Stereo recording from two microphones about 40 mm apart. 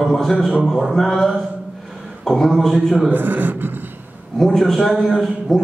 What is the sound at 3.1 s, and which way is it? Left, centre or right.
Speech, right.